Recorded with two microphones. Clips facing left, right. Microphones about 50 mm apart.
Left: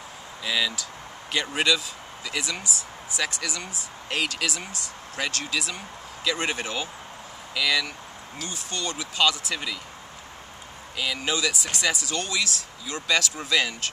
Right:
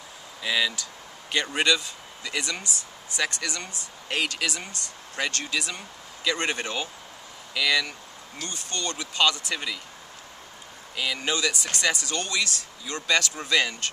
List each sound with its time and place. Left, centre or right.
0.4 s speech: centre
11.0 s speech: centre